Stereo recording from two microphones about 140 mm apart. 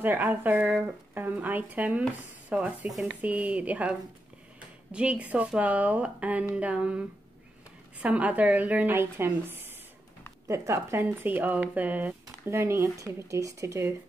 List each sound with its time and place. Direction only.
0.0 s a woman's voice: 15° right (ahead or behind)